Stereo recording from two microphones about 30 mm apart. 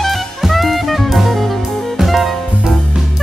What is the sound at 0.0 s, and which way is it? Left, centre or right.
Jazz, centre.